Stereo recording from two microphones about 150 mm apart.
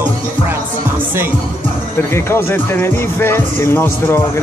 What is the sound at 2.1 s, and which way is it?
Speech, 15° left (ahead or behind).